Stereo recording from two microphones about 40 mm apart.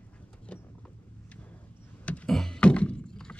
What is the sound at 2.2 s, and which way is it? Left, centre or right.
Thunk, centre.